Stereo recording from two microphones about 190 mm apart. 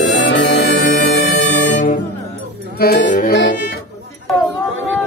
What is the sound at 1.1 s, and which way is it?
Music, 40° left (ahead or behind).